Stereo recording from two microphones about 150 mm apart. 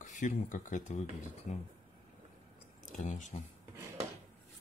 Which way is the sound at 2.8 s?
55° left (ahead or behind).